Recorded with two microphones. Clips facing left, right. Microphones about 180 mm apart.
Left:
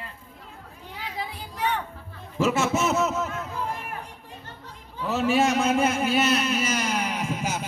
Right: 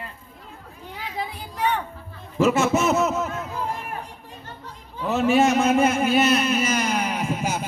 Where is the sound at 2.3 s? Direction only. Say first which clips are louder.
Right 4 dB; 55° right (ahead or behind).